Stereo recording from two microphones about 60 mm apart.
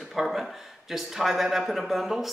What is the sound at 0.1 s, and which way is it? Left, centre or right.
A man's voice, centre.